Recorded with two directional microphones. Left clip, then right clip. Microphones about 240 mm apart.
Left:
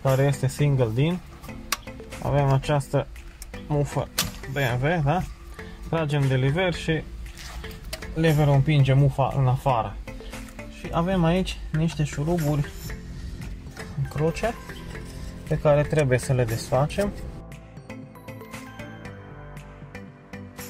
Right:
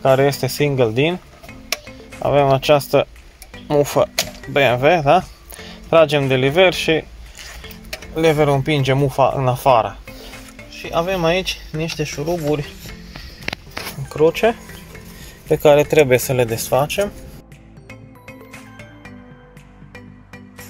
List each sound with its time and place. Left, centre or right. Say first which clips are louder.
0.0 s speech: right 9 dB; right
2.2 s speech: right 11 dB; right
8.2 s speech: right 8 dB; right
14.0 s speech: right 11 dB; right
15.5 s speech: right 9 dB; right